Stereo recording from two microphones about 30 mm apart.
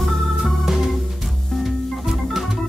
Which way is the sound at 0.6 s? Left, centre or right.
Centre.